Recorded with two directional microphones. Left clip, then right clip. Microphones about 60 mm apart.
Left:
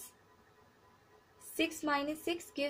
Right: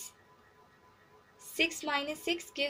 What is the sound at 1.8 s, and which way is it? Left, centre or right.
Speech, centre.